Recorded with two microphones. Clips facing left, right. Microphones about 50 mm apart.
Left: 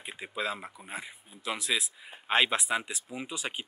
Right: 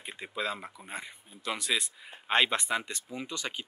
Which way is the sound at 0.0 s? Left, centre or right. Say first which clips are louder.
Even; centre.